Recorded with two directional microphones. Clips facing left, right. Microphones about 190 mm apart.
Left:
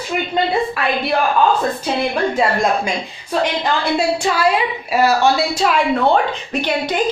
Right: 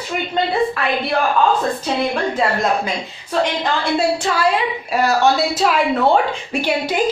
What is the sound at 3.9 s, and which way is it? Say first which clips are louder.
A woman's voice: even; 10° left (ahead or behind).